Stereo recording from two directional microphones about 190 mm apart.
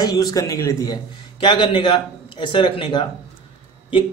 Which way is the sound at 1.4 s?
25° left (ahead or behind).